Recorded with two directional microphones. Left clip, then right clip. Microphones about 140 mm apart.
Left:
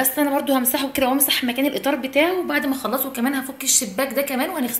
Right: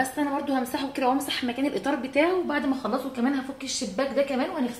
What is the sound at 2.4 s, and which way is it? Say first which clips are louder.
A woman's voice: left 5 dB; 20° left (ahead or behind).